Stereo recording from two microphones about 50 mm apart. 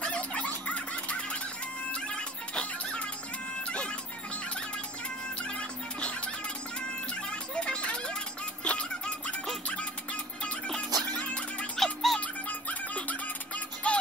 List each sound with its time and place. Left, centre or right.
0.0 s music: left
5.4 s music: left
10.8 s music: left
11.7 s music: centre
12.2 s music: left